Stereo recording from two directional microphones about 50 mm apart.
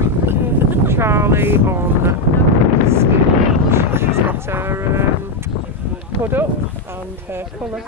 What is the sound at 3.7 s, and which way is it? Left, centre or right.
Wind noise, right.